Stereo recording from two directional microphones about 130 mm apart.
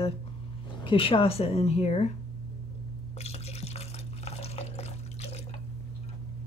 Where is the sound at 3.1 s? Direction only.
55° left (ahead or behind).